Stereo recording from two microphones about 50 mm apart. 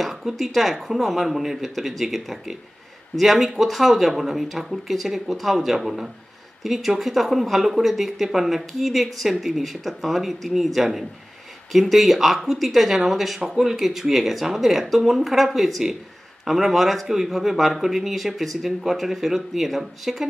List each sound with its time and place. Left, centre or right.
0.0 s speech: centre